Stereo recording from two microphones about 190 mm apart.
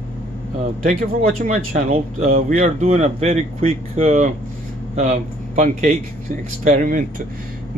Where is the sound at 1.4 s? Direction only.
45° right (ahead or behind).